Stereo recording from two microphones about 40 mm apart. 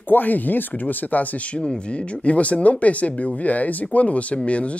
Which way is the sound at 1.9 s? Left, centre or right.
Left.